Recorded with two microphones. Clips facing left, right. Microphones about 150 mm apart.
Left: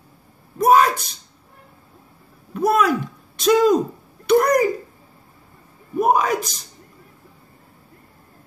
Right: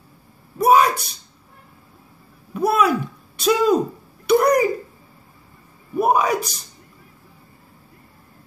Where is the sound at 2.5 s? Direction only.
10° right (ahead or behind).